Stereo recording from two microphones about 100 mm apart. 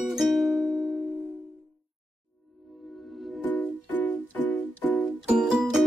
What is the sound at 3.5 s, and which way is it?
Music, 20° left (ahead or behind).